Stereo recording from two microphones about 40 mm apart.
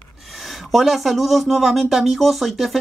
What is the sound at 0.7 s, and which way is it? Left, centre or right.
Speech, centre.